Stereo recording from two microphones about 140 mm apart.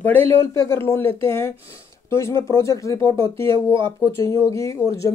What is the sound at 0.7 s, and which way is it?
Speech, 15° left (ahead or behind).